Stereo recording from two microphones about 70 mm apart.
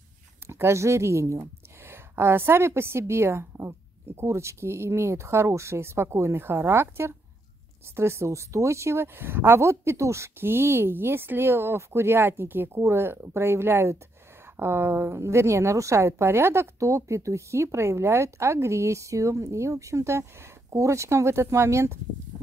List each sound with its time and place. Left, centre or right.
0.5 s a woman's voice: right